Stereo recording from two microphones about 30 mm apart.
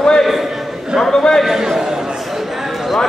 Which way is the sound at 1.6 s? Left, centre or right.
Centre.